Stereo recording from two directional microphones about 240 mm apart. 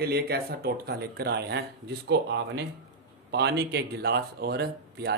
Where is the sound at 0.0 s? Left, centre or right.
Right.